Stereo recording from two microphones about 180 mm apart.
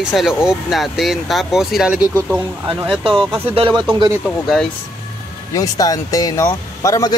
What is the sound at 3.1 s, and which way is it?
Speech, 30° right (ahead or behind).